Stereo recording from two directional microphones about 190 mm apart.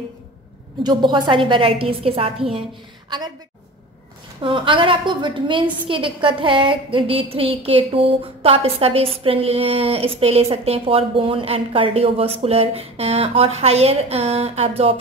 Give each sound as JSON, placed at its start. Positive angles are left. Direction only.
{"t": 0.8, "sound": "a woman's voice", "side_deg": -25}
{"t": 4.4, "sound": "a woman's voice", "side_deg": -25}